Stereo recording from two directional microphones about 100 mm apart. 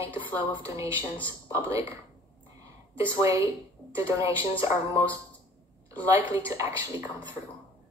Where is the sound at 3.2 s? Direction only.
30° right (ahead or behind).